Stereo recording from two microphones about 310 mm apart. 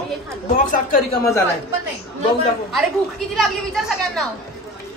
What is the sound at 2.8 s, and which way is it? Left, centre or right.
Speech, centre.